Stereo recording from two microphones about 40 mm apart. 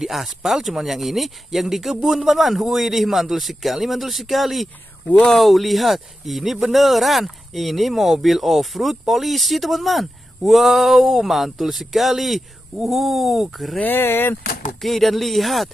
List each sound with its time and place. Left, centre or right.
0.0 s speech: centre
13.8 s speech: left
14.8 s speech: centre